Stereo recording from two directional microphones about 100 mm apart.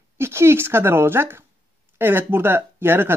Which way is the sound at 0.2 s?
25° right (ahead or behind).